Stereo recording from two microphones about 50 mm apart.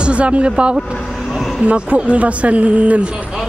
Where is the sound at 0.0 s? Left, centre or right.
Right.